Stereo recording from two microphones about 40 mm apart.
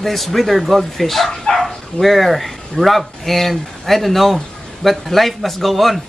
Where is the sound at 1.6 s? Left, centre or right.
Centre.